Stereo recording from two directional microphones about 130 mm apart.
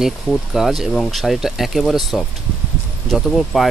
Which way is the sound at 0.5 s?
Centre (ahead or behind).